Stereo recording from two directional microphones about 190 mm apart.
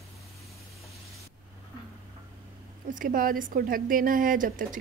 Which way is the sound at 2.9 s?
45° right (ahead or behind).